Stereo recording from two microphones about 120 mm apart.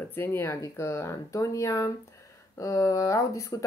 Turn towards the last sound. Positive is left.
turn(degrees=25)  # may be behind; listen again after turning